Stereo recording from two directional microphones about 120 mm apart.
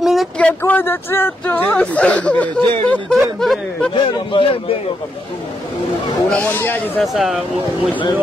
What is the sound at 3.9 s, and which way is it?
Speech, 45° left (ahead or behind).